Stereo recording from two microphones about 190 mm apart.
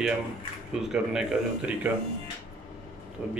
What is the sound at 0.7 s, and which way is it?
Speech, 5° right (ahead or behind).